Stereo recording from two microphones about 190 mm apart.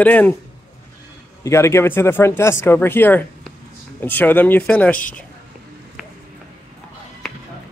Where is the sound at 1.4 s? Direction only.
15° left (ahead or behind).